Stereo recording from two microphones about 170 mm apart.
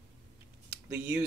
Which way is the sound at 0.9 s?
10° right (ahead or behind).